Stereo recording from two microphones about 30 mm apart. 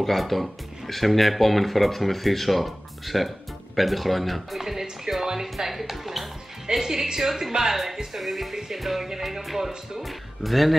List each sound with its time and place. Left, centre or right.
0.0 s speech: centre
4.6 s music: centre
5.7 s music: centre
7.7 s speech: centre
8.7 s music: centre
10.0 s speech: centre